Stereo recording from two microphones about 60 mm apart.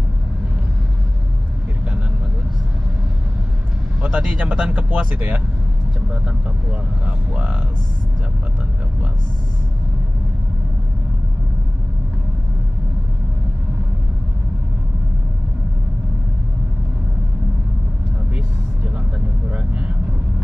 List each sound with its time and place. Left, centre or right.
4.0 s speech: right
7.1 s speech: right
19.5 s vehicle: right